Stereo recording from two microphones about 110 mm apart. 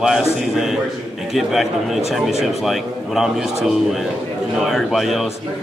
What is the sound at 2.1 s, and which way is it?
Speech, centre (ahead or behind).